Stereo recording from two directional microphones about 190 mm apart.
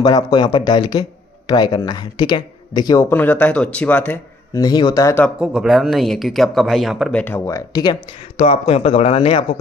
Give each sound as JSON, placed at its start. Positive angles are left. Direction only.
{"t": 0.0, "sound": "speech", "side_deg": 20}
{"t": 4.6, "sound": "speech", "side_deg": 20}
{"t": 5.4, "sound": "speech", "side_deg": -5}
{"t": 8.4, "sound": "speech", "side_deg": 35}